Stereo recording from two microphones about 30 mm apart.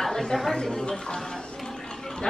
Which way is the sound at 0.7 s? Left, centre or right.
Left.